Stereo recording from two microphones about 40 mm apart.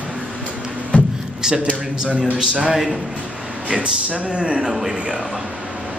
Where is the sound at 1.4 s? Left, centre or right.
Right.